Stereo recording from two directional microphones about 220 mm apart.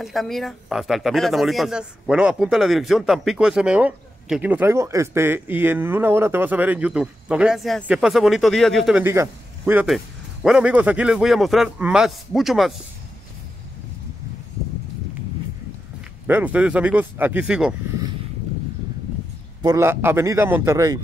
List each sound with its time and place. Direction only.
0.0 s speech: centre (ahead or behind)
16.3 s speech: 10° right (ahead or behind)
19.6 s a man's voice: 15° right (ahead or behind)